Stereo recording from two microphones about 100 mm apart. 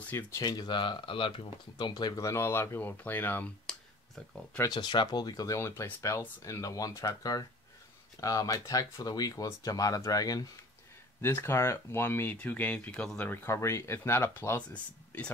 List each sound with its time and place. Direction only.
0.4 s speech: 45° left (ahead or behind)
2.2 s speech: 25° left (ahead or behind)
3.7 s clicking: 5° left (ahead or behind)
4.6 s speech: 45° left (ahead or behind)
5.6 s speech: 25° left (ahead or behind)
11.1 s speech: 25° left (ahead or behind); by 13.3 s 5° left (ahead or behind)
13.3 s speech: 25° left (ahead or behind)
14.7 s speech: 15° left (ahead or behind)